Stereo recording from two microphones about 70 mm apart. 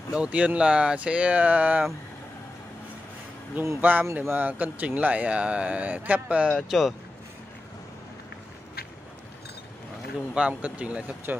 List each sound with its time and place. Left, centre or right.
0.1 s speech: centre
3.8 s speech: right
4.4 s speech: right
6.5 s speech: centre
10.3 s speech: centre